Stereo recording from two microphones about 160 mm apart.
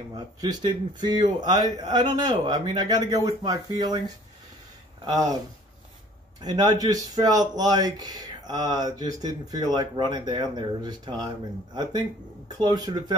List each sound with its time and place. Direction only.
0.1 s speech: 25° right (ahead or behind)
5.0 s speech: 25° right (ahead or behind)
6.4 s speech: 25° right (ahead or behind)
12.4 s speech: 25° right (ahead or behind)